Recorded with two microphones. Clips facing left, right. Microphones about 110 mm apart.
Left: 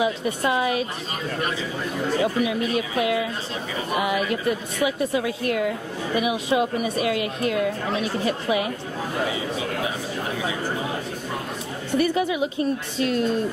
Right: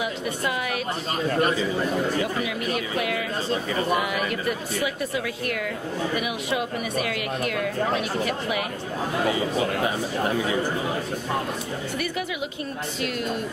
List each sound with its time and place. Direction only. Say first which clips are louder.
0.0 s a woman's voice: left 4 dB; 25° left (ahead or behind)
2.2 s a woman's voice: left 4 dB; 25° left (ahead or behind)
12.0 s a woman's voice: left 11 dB; 30° left (ahead or behind)